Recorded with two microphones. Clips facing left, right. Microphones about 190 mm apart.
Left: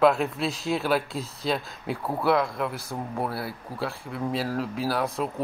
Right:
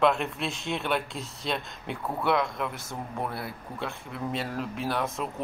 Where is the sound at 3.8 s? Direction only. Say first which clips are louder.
Left 4 dB; centre (ahead or behind).